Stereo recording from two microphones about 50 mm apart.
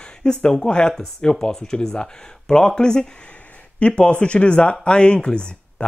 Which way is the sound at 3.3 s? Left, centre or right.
Left.